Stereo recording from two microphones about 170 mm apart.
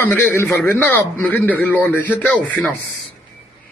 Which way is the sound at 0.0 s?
15° left (ahead or behind).